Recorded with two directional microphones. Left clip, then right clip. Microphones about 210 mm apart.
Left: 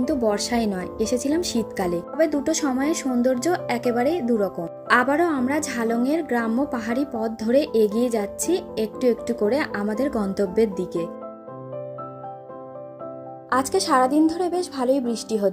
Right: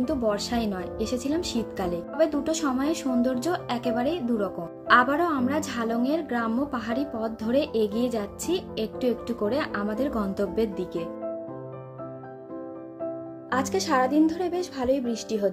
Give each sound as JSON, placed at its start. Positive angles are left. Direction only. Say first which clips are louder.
{"t": 0.0, "sound": "a woman's voice", "louder": "left 4 dB", "side_deg": 25}
{"t": 13.5, "sound": "a woman's voice", "louder": "left 5 dB", "side_deg": 20}